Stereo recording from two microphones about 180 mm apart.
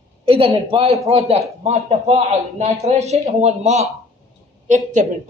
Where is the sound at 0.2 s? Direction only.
30° right (ahead or behind).